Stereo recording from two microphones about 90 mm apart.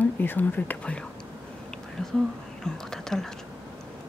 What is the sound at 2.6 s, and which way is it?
Speech, 5° left (ahead or behind).